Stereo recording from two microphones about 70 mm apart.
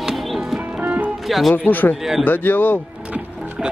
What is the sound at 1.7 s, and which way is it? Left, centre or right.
Speech, left.